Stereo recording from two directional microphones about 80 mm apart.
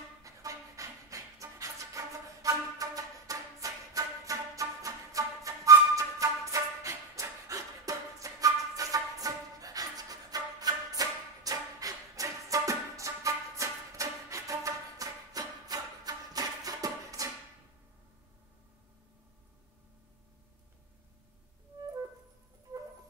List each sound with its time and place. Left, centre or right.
0.2 s music: right